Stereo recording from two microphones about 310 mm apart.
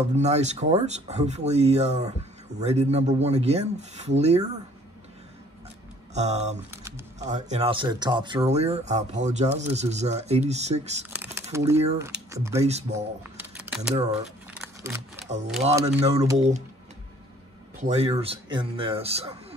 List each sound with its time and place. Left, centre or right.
0.0 s speech: right
6.1 s speech: right
11.1 s a sound: centre
12.0 s speech: centre
12.6 s speech: right
13.2 s a sound: centre
15.2 s speech: right
17.7 s speech: right